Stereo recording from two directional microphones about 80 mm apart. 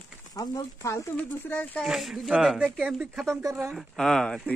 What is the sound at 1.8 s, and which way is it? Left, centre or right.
Speech, centre.